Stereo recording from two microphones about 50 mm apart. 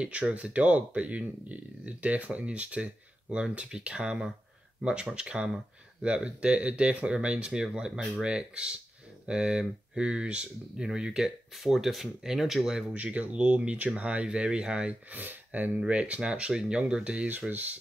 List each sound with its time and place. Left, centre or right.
0.0 s speech: right; by 12.8 s centre
12.9 s speech: right
15.0 s speech: right
15.9 s speech: right
17.5 s speech: right